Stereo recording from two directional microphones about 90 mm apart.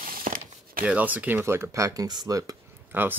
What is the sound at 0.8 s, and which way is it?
Speech, 15° right (ahead or behind).